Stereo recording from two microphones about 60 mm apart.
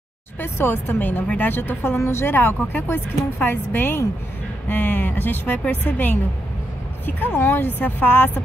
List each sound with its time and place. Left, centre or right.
0.4 s a woman's voice: left
1.2 s a woman's voice: left
1.5 s a woman's voice: left